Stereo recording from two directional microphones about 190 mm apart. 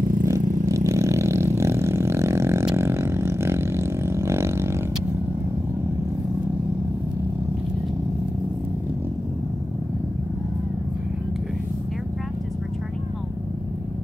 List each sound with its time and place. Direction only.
0.0 s vehicle: 45° right (ahead or behind)
0.7 s vehicle: 15° right (ahead or behind)
2.6 s a sound: 15° right (ahead or behind)